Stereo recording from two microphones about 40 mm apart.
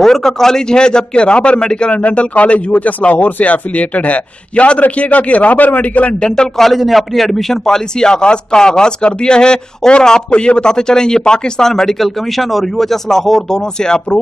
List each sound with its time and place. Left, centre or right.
0.0 s speech: centre
1.9 s a man's voice: left
6.2 s speech: left
6.6 s a man's voice: centre
7.6 s speech: centre